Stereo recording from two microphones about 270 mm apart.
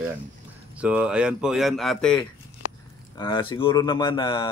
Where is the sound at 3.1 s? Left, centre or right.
Centre.